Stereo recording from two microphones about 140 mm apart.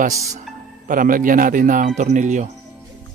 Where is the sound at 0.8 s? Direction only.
80° right; by 2.4 s 60° right (ahead or behind).